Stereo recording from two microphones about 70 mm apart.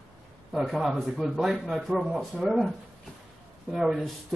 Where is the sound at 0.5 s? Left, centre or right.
Centre.